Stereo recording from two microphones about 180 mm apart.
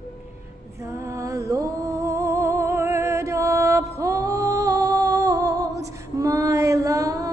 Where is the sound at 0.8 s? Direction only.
15° right (ahead or behind).